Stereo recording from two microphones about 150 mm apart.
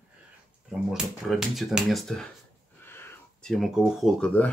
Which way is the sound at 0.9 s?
Centre (ahead or behind).